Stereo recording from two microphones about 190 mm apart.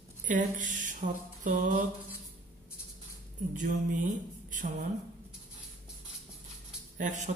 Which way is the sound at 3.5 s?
40° right (ahead or behind).